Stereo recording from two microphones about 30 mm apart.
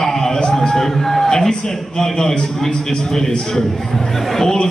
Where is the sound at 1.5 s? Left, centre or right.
Centre.